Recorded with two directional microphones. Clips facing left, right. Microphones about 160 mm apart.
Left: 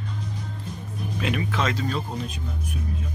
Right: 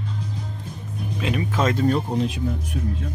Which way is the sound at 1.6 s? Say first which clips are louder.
Right 10 dB; 50° right (ahead or behind).